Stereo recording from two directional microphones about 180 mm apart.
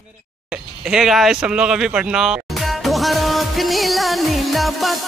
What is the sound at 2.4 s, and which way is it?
Music, centre (ahead or behind).